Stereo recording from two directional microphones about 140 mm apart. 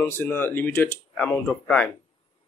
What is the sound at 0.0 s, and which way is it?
Speech, 15° left (ahead or behind).